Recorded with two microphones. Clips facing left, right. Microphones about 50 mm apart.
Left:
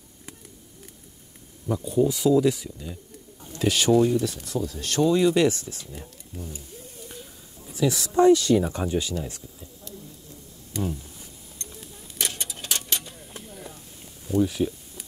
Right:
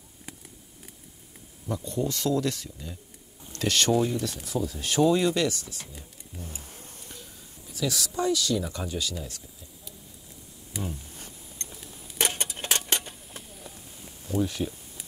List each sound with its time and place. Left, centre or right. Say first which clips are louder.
1.7 s speech: left 7 dB; centre
6.3 s speech: left 4 dB; centre
7.6 s speech: left 5 dB; left
10.8 s speech: left 6 dB; centre
12.2 s a sound: right 3 dB; right
14.2 s a sound: left 5 dB; centre